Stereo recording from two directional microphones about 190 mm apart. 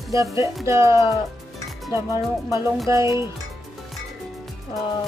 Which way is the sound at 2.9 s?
15° right (ahead or behind).